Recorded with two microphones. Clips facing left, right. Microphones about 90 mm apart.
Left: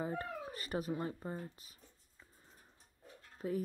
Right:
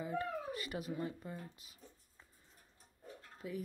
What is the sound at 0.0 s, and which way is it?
Speech, 40° left (ahead or behind).